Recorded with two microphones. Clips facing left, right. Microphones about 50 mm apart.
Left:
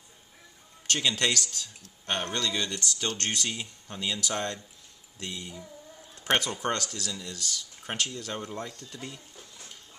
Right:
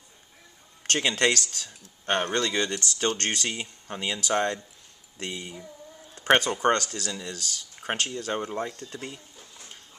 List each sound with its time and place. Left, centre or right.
0.8 s speech: right
2.5 s speech: right
6.1 s speech: right
8.5 s speech: centre
8.7 s speech: right